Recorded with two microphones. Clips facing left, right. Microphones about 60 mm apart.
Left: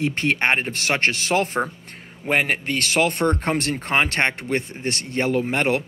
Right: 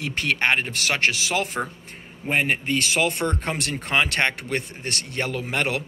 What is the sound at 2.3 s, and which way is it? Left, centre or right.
Speech, left.